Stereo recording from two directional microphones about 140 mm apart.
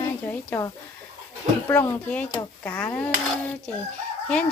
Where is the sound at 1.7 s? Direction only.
20° left (ahead or behind).